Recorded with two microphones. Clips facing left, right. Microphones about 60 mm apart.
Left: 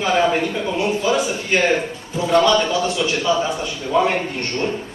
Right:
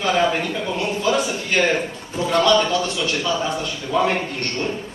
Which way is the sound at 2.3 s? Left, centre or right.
Centre.